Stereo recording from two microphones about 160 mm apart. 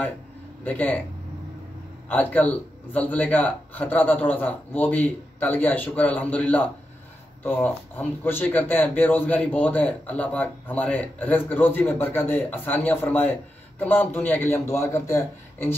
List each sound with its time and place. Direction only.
0.7 s speech: 10° left (ahead or behind)
2.0 s speech: 10° left (ahead or behind)